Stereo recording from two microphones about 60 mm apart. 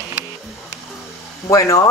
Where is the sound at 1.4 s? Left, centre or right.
Left.